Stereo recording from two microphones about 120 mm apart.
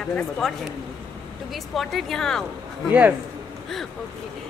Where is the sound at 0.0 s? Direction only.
5° left (ahead or behind).